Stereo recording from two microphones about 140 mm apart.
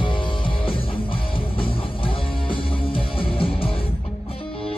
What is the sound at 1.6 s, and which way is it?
Music, 40° left (ahead or behind).